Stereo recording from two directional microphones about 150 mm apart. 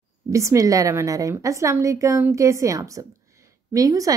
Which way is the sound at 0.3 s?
20° right (ahead or behind).